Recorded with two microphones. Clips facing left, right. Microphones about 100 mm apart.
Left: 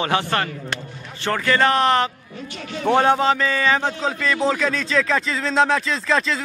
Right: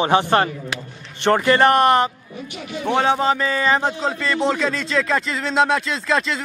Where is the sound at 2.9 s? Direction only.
Centre (ahead or behind).